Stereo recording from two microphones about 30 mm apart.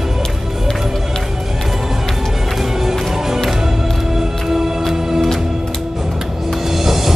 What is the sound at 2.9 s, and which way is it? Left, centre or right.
Music, centre.